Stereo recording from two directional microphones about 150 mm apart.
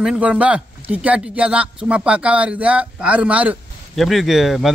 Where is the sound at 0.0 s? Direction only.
10° right (ahead or behind).